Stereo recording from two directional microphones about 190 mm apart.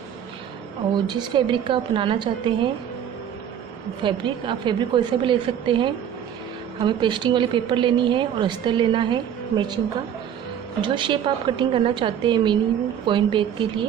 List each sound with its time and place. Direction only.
0.9 s a woman's voice: 25° right (ahead or behind)
4.0 s a woman's voice: 25° right (ahead or behind)
10.8 s a woman's voice: 25° right (ahead or behind)